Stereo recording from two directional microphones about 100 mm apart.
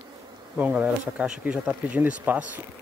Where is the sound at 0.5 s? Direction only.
15° right (ahead or behind).